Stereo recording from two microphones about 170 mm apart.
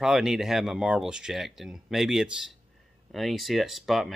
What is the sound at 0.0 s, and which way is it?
Speech, 5° right (ahead or behind).